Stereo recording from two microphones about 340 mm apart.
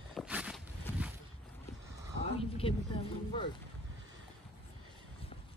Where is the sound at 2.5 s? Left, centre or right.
Centre.